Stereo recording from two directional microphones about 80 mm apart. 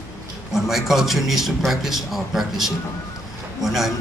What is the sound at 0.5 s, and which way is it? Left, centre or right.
A man's voice, centre.